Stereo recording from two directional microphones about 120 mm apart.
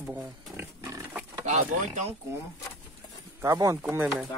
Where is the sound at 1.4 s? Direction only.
90° right.